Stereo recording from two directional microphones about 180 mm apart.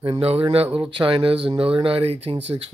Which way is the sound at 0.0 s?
30° right (ahead or behind).